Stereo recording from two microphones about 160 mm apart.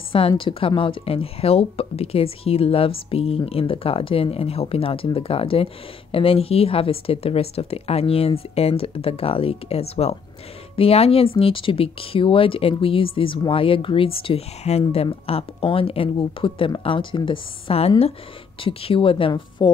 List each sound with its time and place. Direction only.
0.1 s speech: 35° left (ahead or behind)